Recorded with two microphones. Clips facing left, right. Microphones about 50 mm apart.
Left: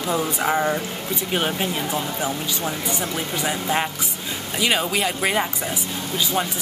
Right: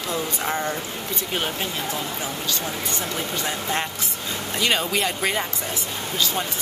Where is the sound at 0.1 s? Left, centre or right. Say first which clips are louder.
Left 5 dB; centre.